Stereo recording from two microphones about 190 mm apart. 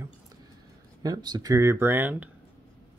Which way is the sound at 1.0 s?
20° right (ahead or behind).